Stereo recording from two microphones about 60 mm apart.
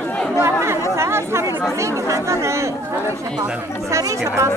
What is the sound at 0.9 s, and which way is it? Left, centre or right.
Chatter, right.